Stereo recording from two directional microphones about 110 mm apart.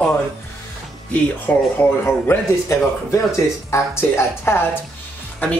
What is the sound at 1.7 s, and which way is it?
Speech, 20° left (ahead or behind).